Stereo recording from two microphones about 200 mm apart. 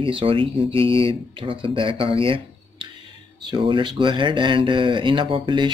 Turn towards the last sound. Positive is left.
turn(degrees=-25)  # may be behind; listen again after turning